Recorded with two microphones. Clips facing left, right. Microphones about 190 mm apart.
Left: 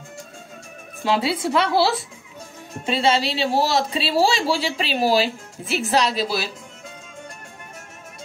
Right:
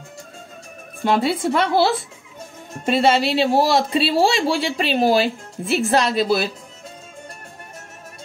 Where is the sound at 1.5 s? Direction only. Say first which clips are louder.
Right 1 dB; 50° right (ahead or behind).